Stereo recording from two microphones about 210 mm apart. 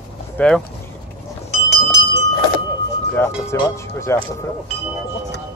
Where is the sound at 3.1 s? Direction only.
10° left (ahead or behind).